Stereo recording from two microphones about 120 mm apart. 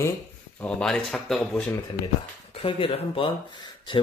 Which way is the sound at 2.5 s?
50° left (ahead or behind).